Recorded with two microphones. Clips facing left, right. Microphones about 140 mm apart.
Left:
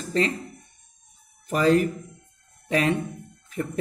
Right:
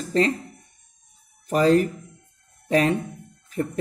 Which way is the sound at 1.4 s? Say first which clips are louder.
Right 2 dB; 35° right (ahead or behind).